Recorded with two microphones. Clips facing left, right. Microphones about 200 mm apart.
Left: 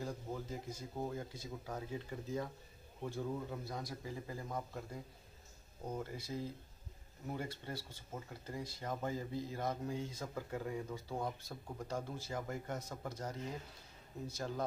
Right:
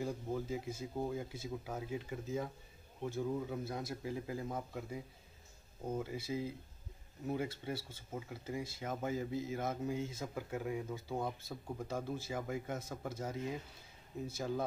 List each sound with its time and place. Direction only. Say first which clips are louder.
0.0 s a man's voice: right 4 dB; 10° right (ahead or behind)